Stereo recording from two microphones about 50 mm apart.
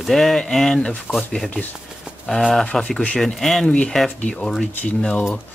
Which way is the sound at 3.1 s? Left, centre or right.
Centre.